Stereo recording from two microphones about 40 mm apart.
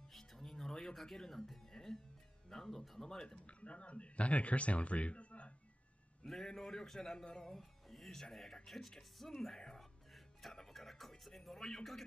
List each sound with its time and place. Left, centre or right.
0.1 s music: centre
2.5 s speech: centre
3.4 s speech: left
6.2 s speech: centre
7.4 s speech: centre
10.1 s music: centre